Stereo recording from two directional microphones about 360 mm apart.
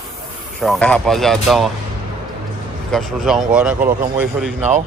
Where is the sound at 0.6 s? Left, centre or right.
Centre.